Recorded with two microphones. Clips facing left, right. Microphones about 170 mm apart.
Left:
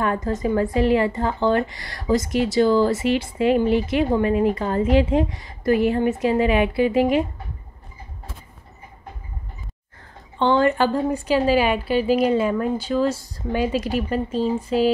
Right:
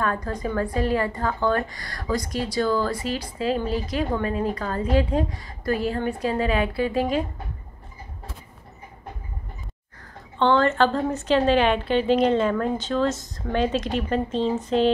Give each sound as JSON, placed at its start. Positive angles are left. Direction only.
{"t": 0.0, "sound": "speech", "side_deg": 20}
{"t": 1.7, "sound": "speech", "side_deg": -45}
{"t": 2.0, "sound": "a woman's voice", "side_deg": 20}
{"t": 10.4, "sound": "a woman's voice", "side_deg": 15}